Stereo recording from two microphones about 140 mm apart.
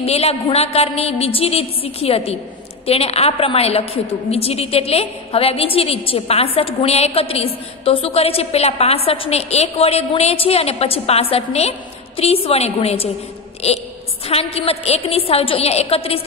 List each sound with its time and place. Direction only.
0.0 s a woman's voice: 45° left (ahead or behind)
14.2 s a woman's voice: 45° left (ahead or behind)